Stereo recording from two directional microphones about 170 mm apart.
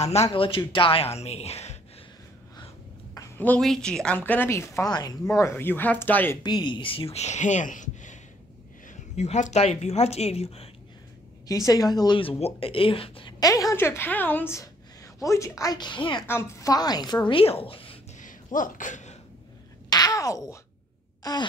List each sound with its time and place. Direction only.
0.0 s a woman's voice: 40° left (ahead or behind)
3.2 s a woman's voice: 10° left (ahead or behind)
6.4 s a woman's voice: 25° left (ahead or behind)
11.4 s speech: 20° left (ahead or behind)
16.3 s a woman's voice: 15° left (ahead or behind); by 17.9 s 35° left (ahead or behind)
18.2 s a sound: 50° left (ahead or behind)
19.9 s a sound: 20° left (ahead or behind)